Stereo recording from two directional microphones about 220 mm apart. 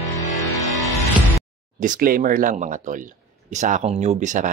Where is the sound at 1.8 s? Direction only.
40° right (ahead or behind).